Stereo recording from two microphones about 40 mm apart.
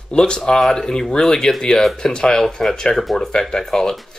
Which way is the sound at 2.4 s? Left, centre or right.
Centre.